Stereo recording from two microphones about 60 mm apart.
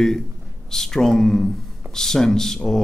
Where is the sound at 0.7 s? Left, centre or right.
Centre.